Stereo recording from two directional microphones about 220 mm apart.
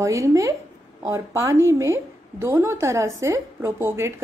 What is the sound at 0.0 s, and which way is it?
A woman's voice, 15° right (ahead or behind).